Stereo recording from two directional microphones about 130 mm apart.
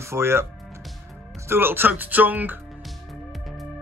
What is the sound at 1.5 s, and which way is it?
Speech, 15° right (ahead or behind).